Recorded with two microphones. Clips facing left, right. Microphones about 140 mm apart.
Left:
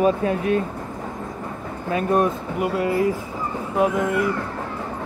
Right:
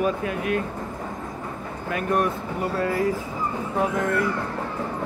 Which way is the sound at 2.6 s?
15° left (ahead or behind).